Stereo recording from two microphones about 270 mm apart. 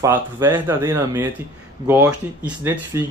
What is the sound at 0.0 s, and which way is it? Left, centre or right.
Speech, centre.